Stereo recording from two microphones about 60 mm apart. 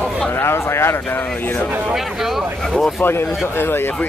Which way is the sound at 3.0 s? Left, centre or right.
Left.